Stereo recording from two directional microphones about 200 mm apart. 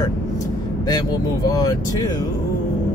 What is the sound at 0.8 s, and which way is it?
Speech, 20° left (ahead or behind).